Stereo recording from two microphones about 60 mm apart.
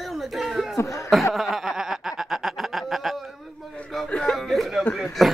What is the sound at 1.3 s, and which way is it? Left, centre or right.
Snicker, centre.